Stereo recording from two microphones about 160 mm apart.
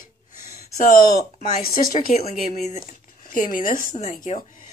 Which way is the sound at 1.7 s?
60° left (ahead or behind).